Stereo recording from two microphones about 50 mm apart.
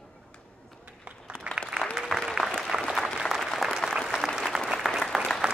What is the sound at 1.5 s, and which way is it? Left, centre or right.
Applause, right.